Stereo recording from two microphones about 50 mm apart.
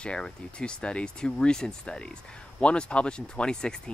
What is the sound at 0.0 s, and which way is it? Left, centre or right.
Speech, centre.